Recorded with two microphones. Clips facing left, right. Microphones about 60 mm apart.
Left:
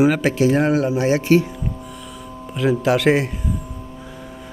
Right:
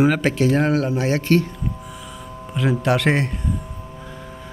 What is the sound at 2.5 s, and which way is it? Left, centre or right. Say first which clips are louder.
Speech: left 2 dB; centre.